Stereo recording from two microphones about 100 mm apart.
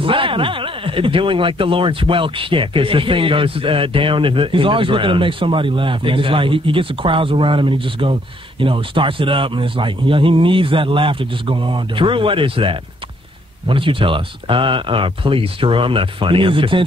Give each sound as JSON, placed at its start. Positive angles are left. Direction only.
{"t": 0.0, "sound": "speech", "side_deg": -60}